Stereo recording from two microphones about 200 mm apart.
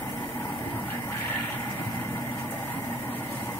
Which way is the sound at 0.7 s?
10° left (ahead or behind).